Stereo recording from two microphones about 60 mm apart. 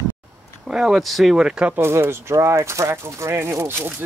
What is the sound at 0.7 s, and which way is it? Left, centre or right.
Speech, centre.